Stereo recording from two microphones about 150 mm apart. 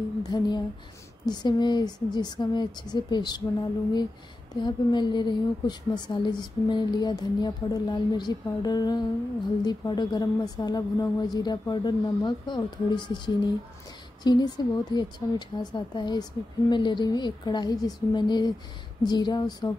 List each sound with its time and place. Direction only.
0.2 s a woman's voice: 30° left (ahead or behind)
4.6 s a woman's voice: 30° left (ahead or behind)